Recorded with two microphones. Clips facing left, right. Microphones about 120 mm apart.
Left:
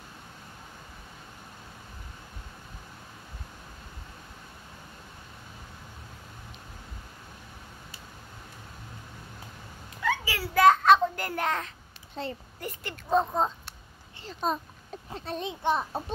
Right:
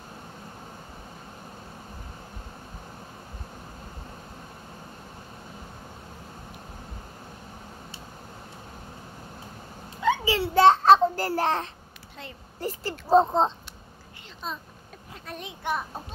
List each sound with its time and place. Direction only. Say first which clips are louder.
10.0 s a sound: right 6 dB; 25° right (ahead or behind)
12.2 s speech: left 8 dB; 30° left (ahead or behind)
12.5 s speech: right 6 dB; 30° right (ahead or behind)
14.2 s speech: left 7 dB; 40° left (ahead or behind)
15.1 s a child's voice: left 5 dB; 25° left (ahead or behind)